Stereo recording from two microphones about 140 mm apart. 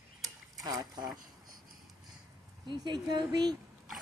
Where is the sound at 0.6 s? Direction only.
25° right (ahead or behind).